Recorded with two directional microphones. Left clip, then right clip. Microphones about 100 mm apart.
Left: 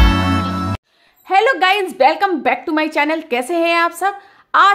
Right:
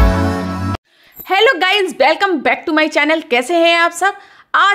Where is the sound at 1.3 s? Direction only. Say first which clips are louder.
Right 1 dB; 20° right (ahead or behind).